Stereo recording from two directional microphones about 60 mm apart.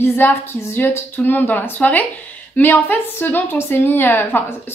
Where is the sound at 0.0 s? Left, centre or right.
Left.